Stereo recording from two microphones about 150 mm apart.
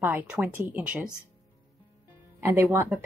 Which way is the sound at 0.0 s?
10° right (ahead or behind).